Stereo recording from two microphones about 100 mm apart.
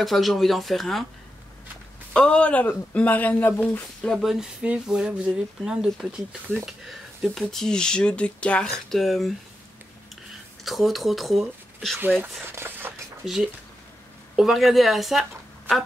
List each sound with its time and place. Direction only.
0.0 s speech: centre (ahead or behind)
2.1 s speech: 10° left (ahead or behind)
4.2 s speech: 5° right (ahead or behind)
10.6 s speech: centre (ahead or behind)
12.4 s a sound: 20° right (ahead or behind)
13.2 s speech: 10° right (ahead or behind)